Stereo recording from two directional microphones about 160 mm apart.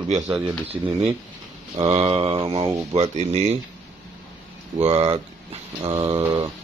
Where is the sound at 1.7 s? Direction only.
25° right (ahead or behind); by 3.6 s 40° right (ahead or behind).